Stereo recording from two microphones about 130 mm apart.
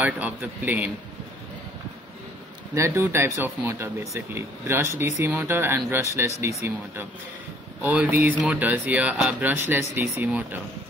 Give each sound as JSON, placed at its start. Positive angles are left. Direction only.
{"t": 0.0, "sound": "speech", "side_deg": -10}
{"t": 2.7, "sound": "speech", "side_deg": -20}
{"t": 7.8, "sound": "speech", "side_deg": -15}